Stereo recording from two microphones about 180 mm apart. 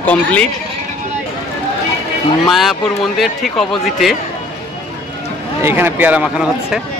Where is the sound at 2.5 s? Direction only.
Centre (ahead or behind).